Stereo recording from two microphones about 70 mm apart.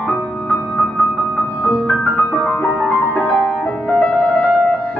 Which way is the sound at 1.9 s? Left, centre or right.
Centre.